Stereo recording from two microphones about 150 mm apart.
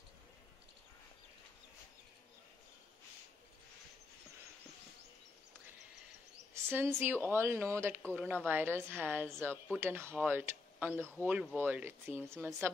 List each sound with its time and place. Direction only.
6.5 s speech: 15° right (ahead or behind)